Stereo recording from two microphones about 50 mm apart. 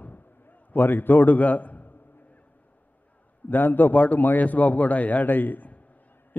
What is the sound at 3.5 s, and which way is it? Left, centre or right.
A man's voice, left.